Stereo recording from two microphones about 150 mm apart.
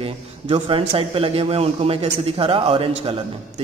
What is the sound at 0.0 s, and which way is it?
A man's voice, 40° right (ahead or behind).